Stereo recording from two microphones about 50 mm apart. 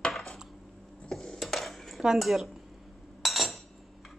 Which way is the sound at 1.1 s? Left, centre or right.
Centre.